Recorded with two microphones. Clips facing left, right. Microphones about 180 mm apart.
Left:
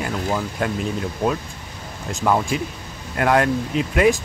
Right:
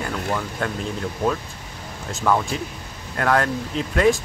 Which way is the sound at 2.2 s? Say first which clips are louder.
Left 1 dB; 15° left (ahead or behind).